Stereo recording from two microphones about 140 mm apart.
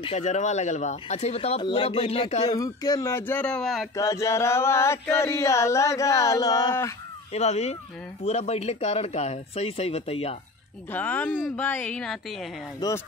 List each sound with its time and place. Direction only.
0.0 s speech: 50° left (ahead or behind)
1.6 s speech: 35° left (ahead or behind)
2.5 s speech: 30° left (ahead or behind); by 3.8 s 5° left (ahead or behind)
3.9 s a sound: 25° left (ahead or behind)
7.3 s speech: 50° left (ahead or behind)
10.9 s speech: 10° left (ahead or behind)
12.8 s a sound: 25° left (ahead or behind)